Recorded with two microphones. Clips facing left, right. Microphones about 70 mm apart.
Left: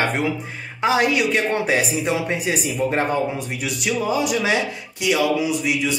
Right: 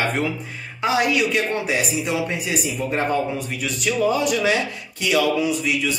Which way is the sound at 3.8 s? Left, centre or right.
Centre.